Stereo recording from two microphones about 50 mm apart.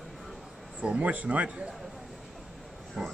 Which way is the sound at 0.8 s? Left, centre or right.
Right.